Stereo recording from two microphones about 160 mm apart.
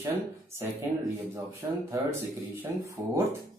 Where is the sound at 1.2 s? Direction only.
15° right (ahead or behind).